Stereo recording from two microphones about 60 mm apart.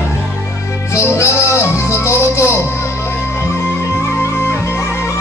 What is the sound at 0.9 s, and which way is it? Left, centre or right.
Music, left.